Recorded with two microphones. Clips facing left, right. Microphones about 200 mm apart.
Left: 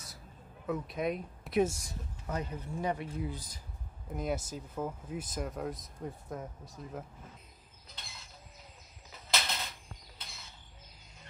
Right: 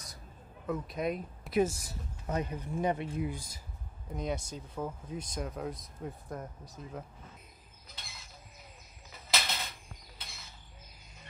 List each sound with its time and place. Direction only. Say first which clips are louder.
0.7 s speech: even; centre (ahead or behind)
2.2 s speech: right 3 dB; 20° right (ahead or behind)
4.1 s speech: left 1 dB; 5° left (ahead or behind)
7.9 s mechanisms: even; centre (ahead or behind)
9.3 s a sound: even; centre (ahead or behind)